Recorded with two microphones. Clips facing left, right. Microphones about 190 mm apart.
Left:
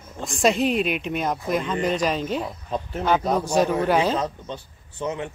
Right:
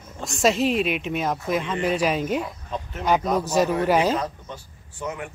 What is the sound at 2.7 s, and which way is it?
Speech, 35° left (ahead or behind).